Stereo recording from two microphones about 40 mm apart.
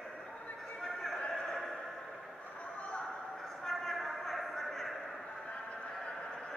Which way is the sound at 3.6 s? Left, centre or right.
Centre.